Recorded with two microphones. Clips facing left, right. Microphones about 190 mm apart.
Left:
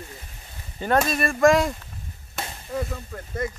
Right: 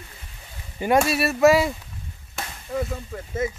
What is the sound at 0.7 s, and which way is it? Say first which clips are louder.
Speech: right 2 dB; 10° right (ahead or behind).